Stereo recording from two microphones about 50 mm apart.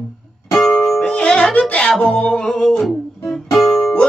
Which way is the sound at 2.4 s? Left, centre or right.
Centre.